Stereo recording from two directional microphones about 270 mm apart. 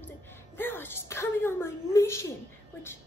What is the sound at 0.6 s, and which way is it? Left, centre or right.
A woman's voice, centre.